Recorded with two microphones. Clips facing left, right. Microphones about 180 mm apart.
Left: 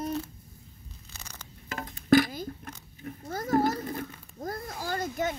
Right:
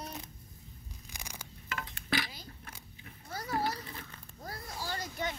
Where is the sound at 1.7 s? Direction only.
40° left (ahead or behind).